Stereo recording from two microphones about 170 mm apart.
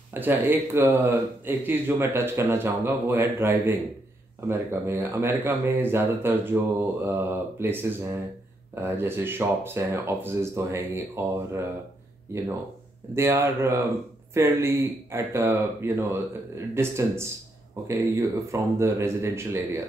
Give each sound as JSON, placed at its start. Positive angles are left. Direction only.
{"t": 0.1, "sound": "speech", "side_deg": -10}
{"t": 13.1, "sound": "speech", "side_deg": -15}